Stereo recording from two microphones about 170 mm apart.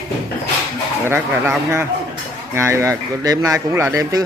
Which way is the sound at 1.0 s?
10° right (ahead or behind).